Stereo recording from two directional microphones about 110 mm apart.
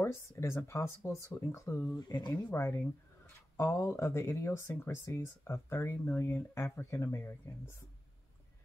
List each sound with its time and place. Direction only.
0.0 s speech: 25° left (ahead or behind)
2.0 s speech: 40° left (ahead or behind)
2.5 s speech: 20° left (ahead or behind)